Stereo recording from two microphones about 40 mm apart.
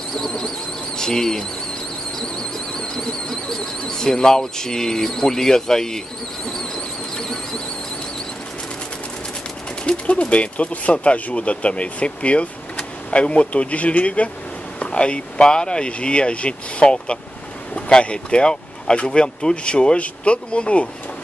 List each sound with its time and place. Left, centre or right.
0.1 s a sound: centre
0.9 s speech: centre
2.8 s speech: centre
7.2 s speech: centre
9.8 s speech: left